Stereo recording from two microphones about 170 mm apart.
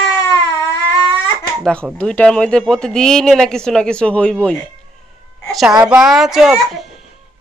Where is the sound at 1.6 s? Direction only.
5° left (ahead or behind).